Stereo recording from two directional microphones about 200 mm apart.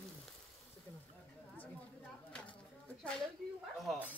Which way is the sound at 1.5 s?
10° left (ahead or behind).